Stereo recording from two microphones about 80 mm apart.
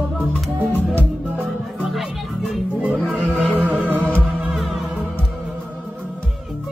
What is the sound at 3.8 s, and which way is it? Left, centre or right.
Music, right.